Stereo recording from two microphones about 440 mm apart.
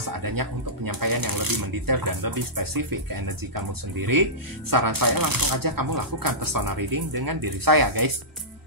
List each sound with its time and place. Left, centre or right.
0.0 s speech: right